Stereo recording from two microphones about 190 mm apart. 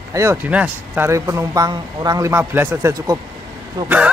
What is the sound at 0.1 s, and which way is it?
Speech, 15° right (ahead or behind).